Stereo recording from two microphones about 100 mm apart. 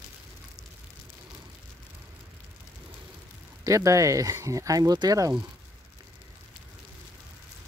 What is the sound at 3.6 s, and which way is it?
Speech, 35° right (ahead or behind).